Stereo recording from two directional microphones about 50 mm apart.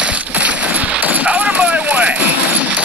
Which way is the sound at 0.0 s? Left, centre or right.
Right.